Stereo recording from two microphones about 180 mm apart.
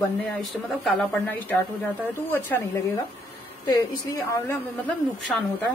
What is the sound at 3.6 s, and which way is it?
Speech, 20° left (ahead or behind).